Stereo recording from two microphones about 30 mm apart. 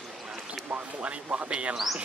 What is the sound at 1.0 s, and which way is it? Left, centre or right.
Speech, right.